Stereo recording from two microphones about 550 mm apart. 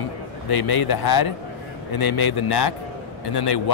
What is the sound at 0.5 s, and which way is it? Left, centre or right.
A man's voice, left.